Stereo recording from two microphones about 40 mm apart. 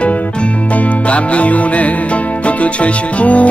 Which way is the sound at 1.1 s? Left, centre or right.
Left.